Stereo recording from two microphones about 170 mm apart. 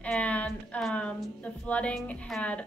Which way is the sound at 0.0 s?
10° left (ahead or behind).